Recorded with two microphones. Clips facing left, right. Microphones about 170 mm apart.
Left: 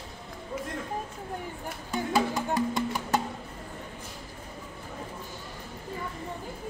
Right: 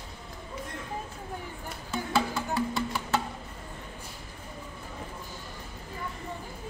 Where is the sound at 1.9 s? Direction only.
15° left (ahead or behind).